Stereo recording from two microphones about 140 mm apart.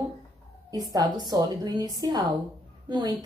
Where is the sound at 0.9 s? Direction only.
30° right (ahead or behind).